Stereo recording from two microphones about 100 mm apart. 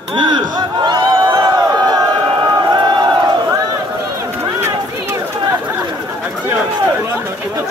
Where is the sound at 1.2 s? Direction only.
35° right (ahead or behind).